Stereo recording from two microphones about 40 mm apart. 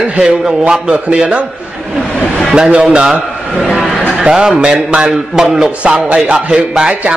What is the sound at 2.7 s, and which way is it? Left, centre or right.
Music, right.